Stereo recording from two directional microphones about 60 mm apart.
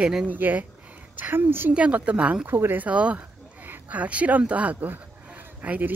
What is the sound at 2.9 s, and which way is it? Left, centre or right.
Speech, right.